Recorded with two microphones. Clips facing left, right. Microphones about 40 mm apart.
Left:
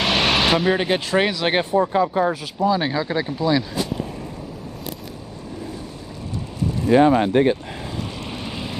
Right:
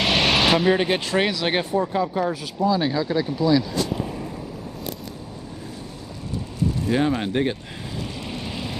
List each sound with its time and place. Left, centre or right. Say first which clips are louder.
0.0 s speech: left 1 dB; centre; by 3.8 s left
3.9 s a sound: even; centre
6.9 s speech: left 9 dB; centre
8.0 s vehicle: left 1 dB; centre